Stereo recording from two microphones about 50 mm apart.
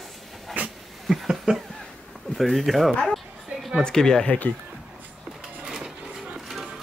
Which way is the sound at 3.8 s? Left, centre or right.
Centre.